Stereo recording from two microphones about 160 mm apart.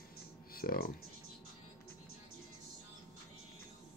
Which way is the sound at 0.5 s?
70° left (ahead or behind).